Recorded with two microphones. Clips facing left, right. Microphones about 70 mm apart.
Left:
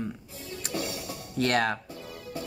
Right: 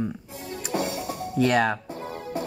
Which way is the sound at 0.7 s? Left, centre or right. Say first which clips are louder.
Right 6 dB; right.